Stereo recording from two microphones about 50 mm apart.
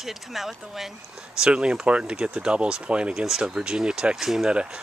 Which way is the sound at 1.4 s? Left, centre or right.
Right.